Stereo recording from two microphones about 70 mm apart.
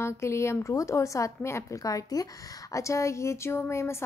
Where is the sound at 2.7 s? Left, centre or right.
Left.